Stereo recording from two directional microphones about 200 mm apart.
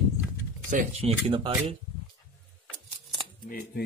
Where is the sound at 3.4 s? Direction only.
45° left (ahead or behind).